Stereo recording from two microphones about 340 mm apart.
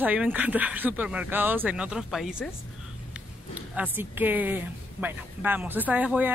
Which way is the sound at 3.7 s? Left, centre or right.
Centre.